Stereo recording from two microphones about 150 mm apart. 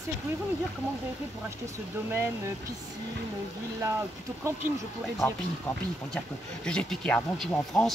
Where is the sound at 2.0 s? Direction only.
15° right (ahead or behind).